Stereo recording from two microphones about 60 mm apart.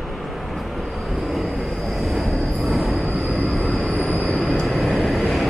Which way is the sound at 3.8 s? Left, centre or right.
Centre.